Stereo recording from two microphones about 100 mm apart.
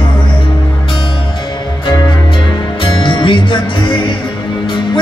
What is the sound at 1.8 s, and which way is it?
Music, 45° left (ahead or behind).